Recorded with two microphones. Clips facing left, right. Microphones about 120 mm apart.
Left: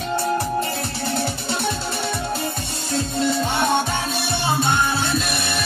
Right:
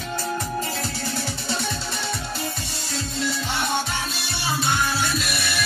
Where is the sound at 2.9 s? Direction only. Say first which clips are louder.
Left 7 dB; 50° left (ahead or behind).